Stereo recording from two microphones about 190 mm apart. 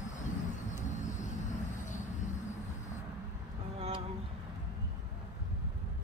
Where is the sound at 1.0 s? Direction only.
40° left (ahead or behind).